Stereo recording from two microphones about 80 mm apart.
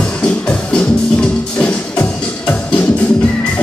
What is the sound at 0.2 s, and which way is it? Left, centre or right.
Music, centre.